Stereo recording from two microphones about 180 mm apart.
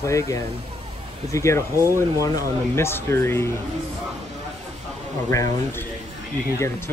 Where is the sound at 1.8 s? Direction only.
15° right (ahead or behind).